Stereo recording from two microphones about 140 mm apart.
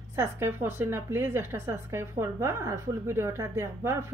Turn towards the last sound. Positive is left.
turn(degrees=-20)  # may be behind; listen again after turning